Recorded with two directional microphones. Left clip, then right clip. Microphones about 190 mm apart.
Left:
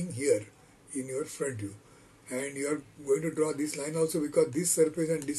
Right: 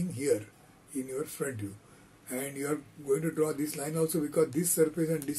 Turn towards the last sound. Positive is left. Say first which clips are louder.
# left 1 dB
turn(degrees=-20)  # may be behind; listen again after turning